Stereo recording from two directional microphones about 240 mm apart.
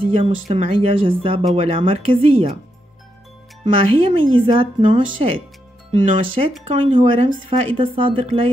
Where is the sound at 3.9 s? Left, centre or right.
Right.